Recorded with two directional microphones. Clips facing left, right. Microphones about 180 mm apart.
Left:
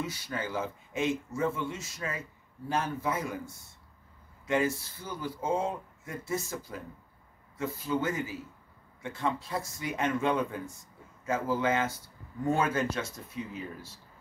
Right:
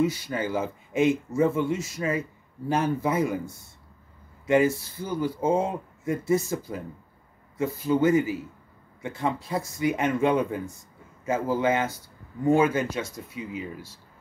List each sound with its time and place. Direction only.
0.0 s speech: 15° right (ahead or behind)
4.5 s speech: 15° right (ahead or behind)